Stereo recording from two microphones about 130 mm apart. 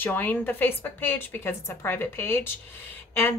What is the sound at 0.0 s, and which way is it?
Speech, 15° left (ahead or behind).